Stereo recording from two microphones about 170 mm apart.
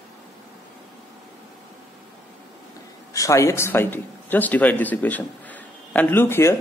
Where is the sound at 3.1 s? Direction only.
20° left (ahead or behind).